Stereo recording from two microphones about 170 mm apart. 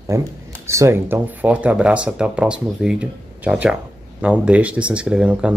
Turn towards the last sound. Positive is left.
turn(degrees=-5)  # may be behind; listen again after turning